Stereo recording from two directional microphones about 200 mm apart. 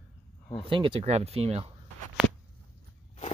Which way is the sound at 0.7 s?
25° right (ahead or behind).